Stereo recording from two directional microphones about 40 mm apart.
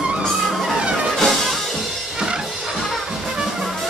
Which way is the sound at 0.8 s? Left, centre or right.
Right.